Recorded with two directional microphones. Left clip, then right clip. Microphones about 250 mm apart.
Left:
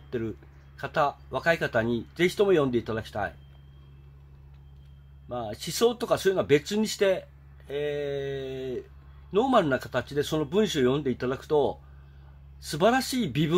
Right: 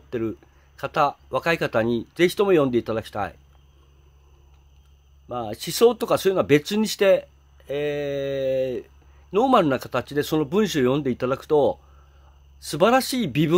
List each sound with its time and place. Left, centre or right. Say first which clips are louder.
0.1 s speech: right 5 dB; right
5.3 s speech: right 4 dB; right